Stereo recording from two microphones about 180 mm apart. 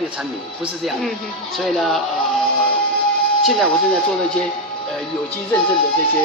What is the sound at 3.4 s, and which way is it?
Speech, centre (ahead or behind).